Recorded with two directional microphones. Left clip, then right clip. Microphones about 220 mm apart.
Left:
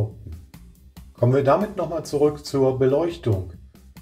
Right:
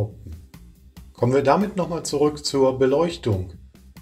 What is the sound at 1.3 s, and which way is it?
Speech, 30° right (ahead or behind).